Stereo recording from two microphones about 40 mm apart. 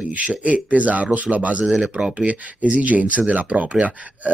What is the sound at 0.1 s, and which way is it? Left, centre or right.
Speech, right.